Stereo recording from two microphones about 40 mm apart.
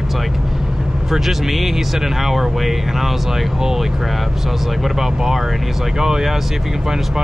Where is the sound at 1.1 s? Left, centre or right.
Centre.